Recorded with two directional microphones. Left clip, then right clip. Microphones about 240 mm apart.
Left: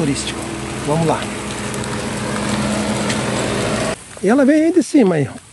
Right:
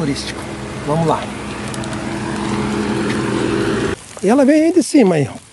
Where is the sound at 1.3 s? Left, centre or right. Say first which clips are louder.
Left 1 dB; left.